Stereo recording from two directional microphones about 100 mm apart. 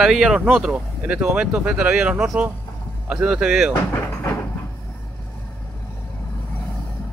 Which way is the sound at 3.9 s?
25° left (ahead or behind).